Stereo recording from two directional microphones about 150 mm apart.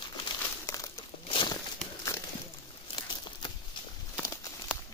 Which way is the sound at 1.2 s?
35° left (ahead or behind).